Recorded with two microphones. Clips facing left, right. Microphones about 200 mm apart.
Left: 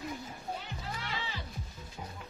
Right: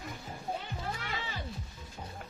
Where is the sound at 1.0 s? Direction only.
50° right (ahead or behind).